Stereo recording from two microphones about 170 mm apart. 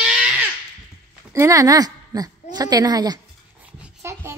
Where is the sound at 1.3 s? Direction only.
20° right (ahead or behind).